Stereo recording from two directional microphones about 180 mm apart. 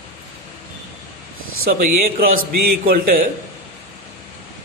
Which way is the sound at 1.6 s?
55° right (ahead or behind).